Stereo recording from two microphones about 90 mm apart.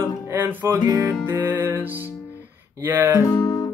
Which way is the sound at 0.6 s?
35° right (ahead or behind).